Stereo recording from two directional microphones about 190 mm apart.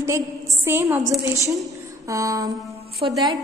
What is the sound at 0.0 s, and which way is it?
A woman's voice, 15° right (ahead or behind).